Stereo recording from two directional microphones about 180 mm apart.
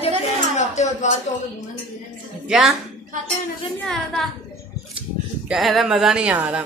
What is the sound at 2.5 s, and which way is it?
Speech, centre (ahead or behind).